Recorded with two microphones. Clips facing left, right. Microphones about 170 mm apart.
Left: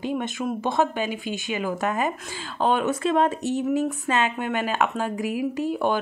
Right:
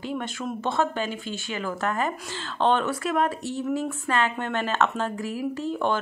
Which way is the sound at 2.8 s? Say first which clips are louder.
Left 4 dB; 25° left (ahead or behind).